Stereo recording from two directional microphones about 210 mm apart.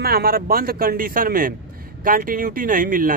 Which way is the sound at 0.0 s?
45° right (ahead or behind).